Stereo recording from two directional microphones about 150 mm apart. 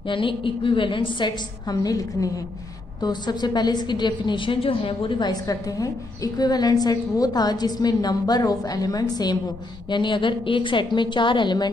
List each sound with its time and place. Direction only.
0.1 s a woman's voice: 35° left (ahead or behind)